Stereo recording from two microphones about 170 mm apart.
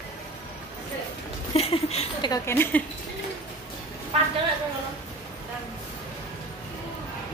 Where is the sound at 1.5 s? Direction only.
35° left (ahead or behind).